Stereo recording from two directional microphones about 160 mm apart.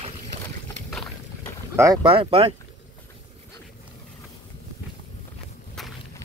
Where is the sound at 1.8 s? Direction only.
20° right (ahead or behind).